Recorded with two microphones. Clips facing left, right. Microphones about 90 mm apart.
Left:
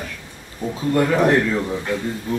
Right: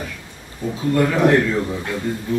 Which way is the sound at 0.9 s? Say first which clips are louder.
Right 1 dB; 20° left (ahead or behind).